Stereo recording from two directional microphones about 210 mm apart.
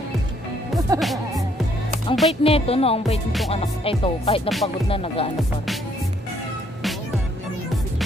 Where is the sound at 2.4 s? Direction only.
30° left (ahead or behind).